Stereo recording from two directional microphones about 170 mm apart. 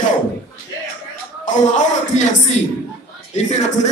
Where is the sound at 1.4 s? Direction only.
45° left (ahead or behind).